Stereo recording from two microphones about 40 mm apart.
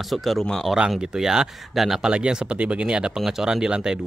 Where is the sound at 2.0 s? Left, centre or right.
Right.